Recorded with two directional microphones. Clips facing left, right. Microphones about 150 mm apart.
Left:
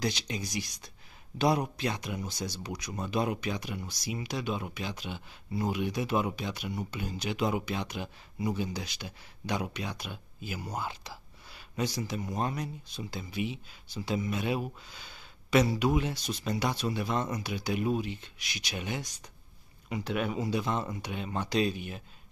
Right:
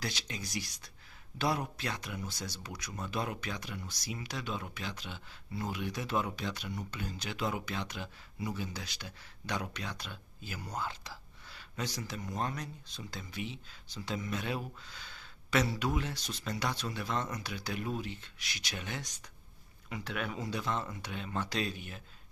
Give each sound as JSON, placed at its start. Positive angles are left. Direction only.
{"t": 0.0, "sound": "speech", "side_deg": 20}